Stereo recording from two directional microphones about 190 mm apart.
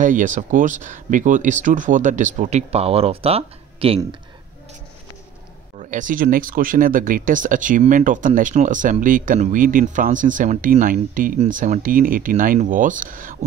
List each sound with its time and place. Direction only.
0.0 s speech: 45° right (ahead or behind)
5.8 s speech: 40° right (ahead or behind)